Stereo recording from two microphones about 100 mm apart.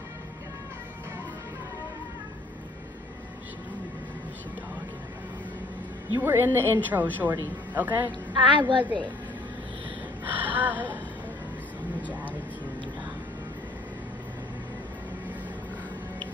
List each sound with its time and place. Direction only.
6.1 s a woman's voice: 20° right (ahead or behind)
8.5 s a woman's voice: 55° right (ahead or behind)
10.2 s gasp: 15° right (ahead or behind)
12.1 s speech: 15° right (ahead or behind)